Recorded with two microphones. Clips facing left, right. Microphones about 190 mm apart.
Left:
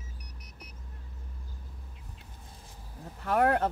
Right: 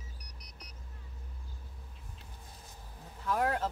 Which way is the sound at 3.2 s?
65° left (ahead or behind).